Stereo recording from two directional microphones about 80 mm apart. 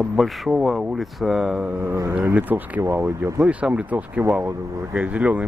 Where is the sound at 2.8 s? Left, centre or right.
Right.